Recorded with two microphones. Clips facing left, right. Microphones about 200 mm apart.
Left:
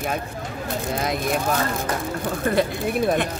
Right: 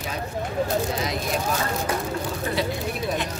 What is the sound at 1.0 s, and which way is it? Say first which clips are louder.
Speech: left 3 dB; 55° left (ahead or behind).